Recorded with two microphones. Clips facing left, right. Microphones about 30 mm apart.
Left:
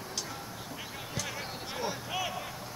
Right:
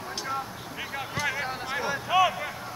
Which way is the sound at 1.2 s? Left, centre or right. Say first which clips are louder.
Right 9 dB; right.